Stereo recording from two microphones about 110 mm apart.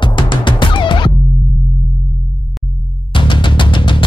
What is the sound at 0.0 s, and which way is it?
Music, 45° left (ahead or behind).